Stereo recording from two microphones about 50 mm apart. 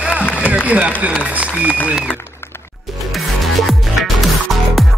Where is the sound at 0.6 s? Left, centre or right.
Right.